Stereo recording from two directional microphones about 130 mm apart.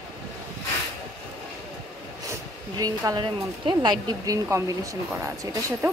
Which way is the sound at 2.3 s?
30° right (ahead or behind).